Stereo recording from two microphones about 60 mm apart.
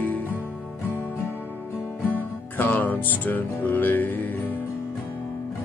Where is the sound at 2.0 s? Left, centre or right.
Left.